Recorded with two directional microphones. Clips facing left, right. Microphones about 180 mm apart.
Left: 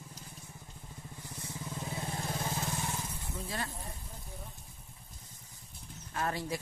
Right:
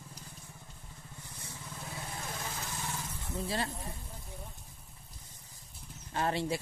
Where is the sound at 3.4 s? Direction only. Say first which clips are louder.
Right 4 dB; 30° right (ahead or behind).